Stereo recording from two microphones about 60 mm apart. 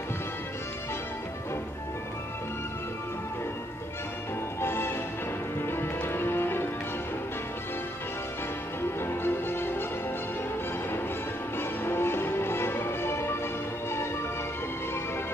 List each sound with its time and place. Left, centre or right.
4.6 s music: left
9.0 s music: left
11.8 s music: left